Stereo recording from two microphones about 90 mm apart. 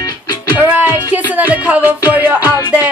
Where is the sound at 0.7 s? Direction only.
20° right (ahead or behind).